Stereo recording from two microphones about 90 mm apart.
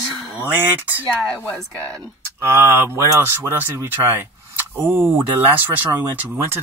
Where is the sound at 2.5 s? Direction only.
25° right (ahead or behind).